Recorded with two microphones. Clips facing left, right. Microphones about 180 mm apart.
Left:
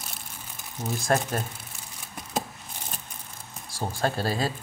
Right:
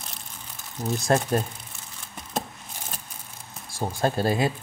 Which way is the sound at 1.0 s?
30° right (ahead or behind).